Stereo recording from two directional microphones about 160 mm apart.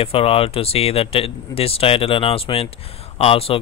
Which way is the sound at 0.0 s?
35° left (ahead or behind).